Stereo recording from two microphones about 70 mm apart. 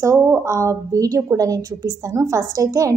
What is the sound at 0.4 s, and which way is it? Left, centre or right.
A woman's voice, right.